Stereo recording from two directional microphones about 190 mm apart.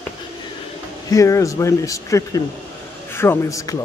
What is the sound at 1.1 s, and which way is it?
Speech, 15° left (ahead or behind).